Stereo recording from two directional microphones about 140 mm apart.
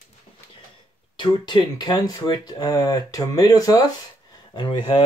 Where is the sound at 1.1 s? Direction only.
35° left (ahead or behind).